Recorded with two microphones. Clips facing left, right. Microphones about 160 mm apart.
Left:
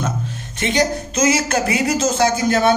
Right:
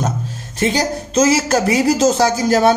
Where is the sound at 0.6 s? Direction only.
35° right (ahead or behind).